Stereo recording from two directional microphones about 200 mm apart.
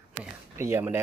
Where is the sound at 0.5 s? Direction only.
10° right (ahead or behind).